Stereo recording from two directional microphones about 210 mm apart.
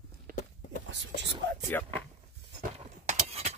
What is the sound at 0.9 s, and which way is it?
Whispering, 55° right (ahead or behind).